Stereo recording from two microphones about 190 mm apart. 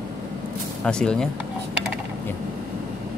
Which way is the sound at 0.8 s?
5° left (ahead or behind).